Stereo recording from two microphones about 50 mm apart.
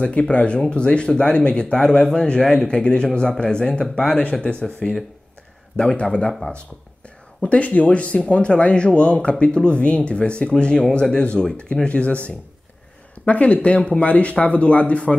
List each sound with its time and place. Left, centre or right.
0.0 s speech: left
4.4 s speech: centre
7.4 s speech: left
13.2 s speech: left